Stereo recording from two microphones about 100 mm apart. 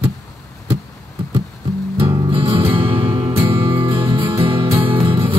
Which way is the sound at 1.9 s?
55° right (ahead or behind).